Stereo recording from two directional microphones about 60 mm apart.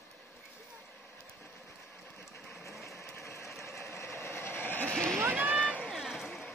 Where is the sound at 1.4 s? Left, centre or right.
Left.